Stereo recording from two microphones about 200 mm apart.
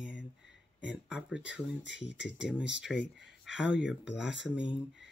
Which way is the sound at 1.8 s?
60° left (ahead or behind).